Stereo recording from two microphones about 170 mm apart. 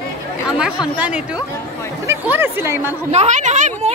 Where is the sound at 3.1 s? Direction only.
45° right (ahead or behind).